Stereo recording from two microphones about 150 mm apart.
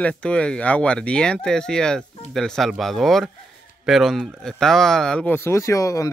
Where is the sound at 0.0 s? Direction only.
10° left (ahead or behind).